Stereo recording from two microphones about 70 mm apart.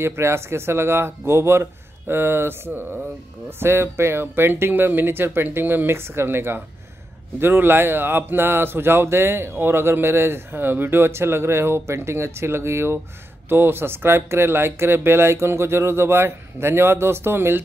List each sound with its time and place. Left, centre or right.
0.0 s speech: right